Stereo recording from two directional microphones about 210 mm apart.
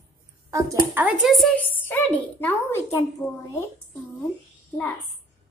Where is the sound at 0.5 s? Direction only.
10° right (ahead or behind); by 3.3 s 10° left (ahead or behind).